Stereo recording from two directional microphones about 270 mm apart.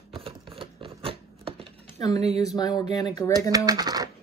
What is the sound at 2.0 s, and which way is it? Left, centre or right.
Speech, centre.